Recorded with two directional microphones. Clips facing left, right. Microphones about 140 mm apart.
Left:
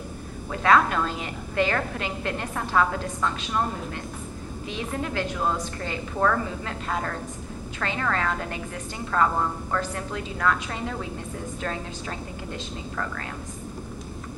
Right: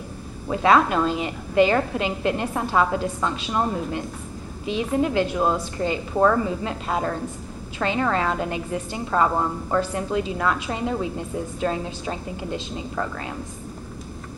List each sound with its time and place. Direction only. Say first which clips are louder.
0.5 s a woman's voice: right 3 dB; 20° right (ahead or behind)